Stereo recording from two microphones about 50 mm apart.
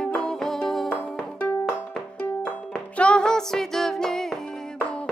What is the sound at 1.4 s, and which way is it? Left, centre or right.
Music, left.